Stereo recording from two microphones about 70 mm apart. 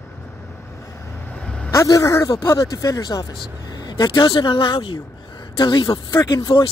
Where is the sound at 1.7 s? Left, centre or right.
Left.